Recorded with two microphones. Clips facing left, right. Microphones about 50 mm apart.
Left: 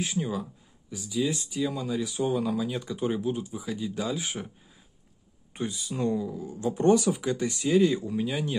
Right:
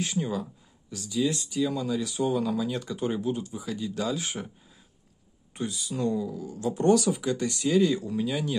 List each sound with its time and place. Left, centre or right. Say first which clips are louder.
0.0 s speech: right 1 dB; centre
5.5 s speech: even; left